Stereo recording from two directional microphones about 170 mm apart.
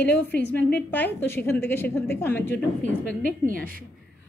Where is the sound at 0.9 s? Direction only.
10° left (ahead or behind).